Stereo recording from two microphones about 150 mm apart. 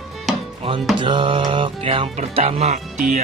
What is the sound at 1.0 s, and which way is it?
Music, 35° right (ahead or behind).